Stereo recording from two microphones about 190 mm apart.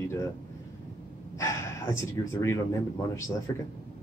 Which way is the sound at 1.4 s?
15° left (ahead or behind).